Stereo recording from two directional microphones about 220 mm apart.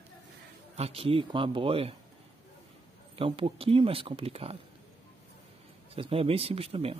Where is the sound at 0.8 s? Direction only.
25° right (ahead or behind).